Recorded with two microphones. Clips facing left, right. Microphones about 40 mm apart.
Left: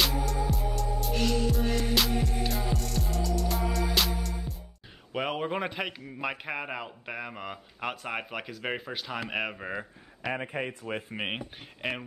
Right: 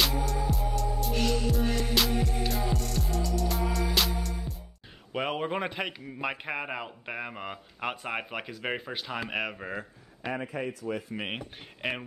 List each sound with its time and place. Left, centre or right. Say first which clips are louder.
0.0 s music: even; centre
5.1 s a man's voice: even; centre
10.3 s speech: even; left
11.8 s a man's voice: right 1 dB; centre